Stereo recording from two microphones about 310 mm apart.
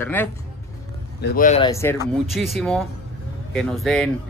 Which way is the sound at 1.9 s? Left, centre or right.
Centre.